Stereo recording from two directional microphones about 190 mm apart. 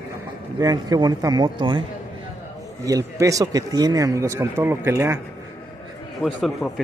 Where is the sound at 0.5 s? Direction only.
20° right (ahead or behind).